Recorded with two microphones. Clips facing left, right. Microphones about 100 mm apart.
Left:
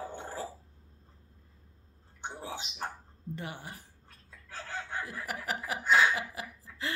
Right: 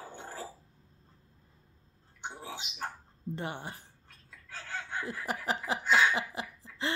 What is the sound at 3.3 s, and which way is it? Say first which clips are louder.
Speech: right 3 dB; 30° right (ahead or behind).